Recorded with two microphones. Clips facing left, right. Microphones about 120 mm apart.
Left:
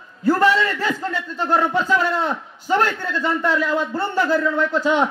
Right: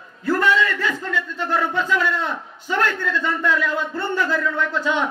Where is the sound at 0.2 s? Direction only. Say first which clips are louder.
Left 2 dB; 35° left (ahead or behind).